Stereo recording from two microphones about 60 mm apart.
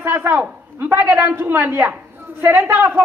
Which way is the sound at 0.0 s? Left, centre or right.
Right.